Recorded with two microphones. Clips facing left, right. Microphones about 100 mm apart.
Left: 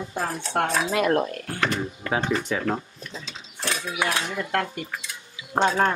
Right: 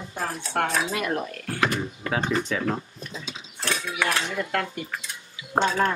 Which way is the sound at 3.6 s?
15° left (ahead or behind).